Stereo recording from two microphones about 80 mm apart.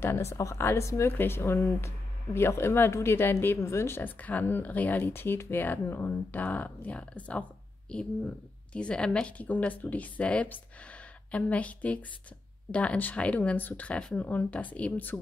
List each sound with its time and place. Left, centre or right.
0.0 s a woman's voice: left; by 7.4 s centre
8.7 s a woman's voice: centre